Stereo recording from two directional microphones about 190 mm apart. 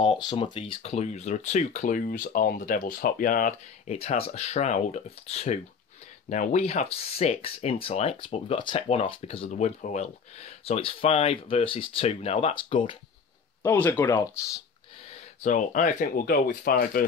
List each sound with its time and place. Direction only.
0.0 s speech: 25° left (ahead or behind)
13.6 s speech: 10° left (ahead or behind)
15.4 s speech: 40° left (ahead or behind)